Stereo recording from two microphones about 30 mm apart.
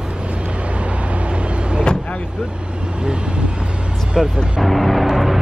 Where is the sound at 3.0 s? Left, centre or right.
Right.